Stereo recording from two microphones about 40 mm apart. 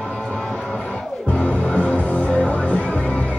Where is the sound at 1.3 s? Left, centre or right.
Left.